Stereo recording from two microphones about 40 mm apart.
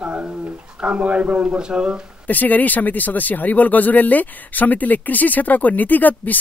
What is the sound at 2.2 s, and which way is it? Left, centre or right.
Speech, left.